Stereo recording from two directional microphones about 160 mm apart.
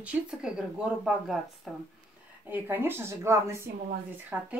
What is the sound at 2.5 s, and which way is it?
Speech, 10° right (ahead or behind).